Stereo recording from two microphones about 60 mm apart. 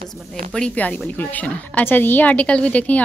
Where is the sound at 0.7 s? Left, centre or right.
Left.